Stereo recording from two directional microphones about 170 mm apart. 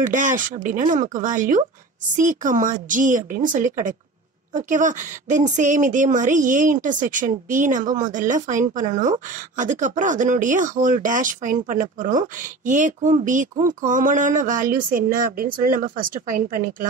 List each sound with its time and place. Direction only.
0.0 s a woman's voice: 50° right (ahead or behind)